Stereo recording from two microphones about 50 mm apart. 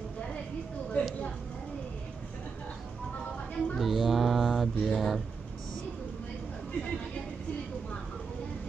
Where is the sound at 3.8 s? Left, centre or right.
Centre.